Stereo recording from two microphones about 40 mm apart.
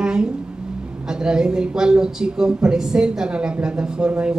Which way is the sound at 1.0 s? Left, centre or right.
Right.